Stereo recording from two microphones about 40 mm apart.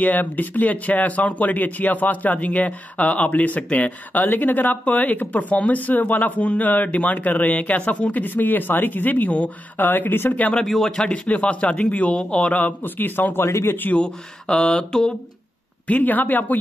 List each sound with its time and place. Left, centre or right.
0.0 s a man's voice: left
10.6 s speech: centre
11.1 s a man's voice: left
12.5 s a man's voice: left
13.9 s a man's voice: left
15.9 s speech: left